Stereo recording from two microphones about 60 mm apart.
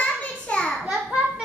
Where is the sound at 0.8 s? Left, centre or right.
Centre.